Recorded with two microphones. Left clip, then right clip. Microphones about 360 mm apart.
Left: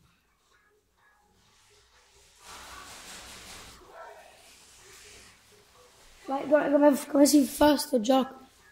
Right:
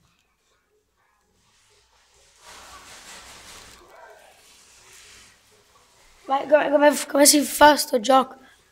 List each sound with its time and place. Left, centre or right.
6.2 s a woman's voice: right